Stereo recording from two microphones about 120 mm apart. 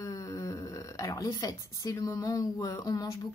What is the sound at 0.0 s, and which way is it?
Speech, 30° left (ahead or behind).